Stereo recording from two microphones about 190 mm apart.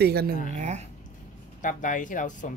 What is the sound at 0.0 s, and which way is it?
Speech, 55° right (ahead or behind).